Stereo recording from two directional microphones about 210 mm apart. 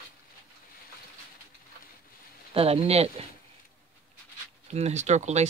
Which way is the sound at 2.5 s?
30° right (ahead or behind).